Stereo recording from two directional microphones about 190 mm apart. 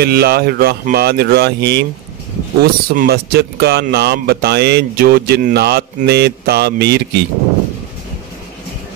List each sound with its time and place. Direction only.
0.0 s speech: 55° right (ahead or behind)